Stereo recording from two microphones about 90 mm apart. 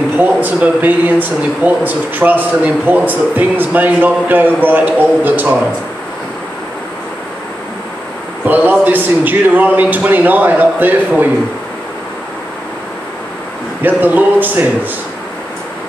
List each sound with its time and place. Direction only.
0.2 s speech: 20° right (ahead or behind)
8.5 s speech: 20° right (ahead or behind)
13.8 s speech: 20° right (ahead or behind)